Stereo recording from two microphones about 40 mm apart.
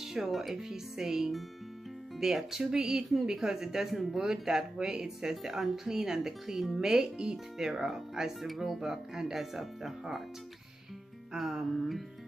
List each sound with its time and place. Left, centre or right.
0.0 s speech: centre
11.3 s music: centre